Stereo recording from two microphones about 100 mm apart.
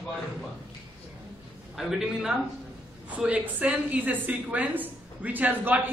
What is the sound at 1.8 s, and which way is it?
A man's voice, 5° right (ahead or behind).